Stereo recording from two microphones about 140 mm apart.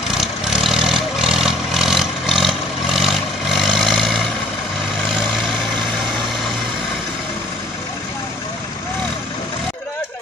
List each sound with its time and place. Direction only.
0.1 s vehicle: centre (ahead or behind)